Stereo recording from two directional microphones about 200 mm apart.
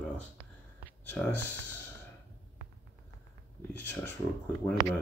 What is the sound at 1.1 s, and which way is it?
Speech, 10° left (ahead or behind).